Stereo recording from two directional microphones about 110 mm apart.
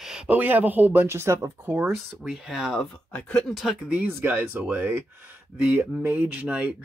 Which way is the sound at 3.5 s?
5° right (ahead or behind).